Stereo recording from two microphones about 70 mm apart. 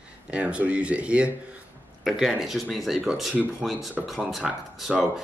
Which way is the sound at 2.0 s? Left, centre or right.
Centre.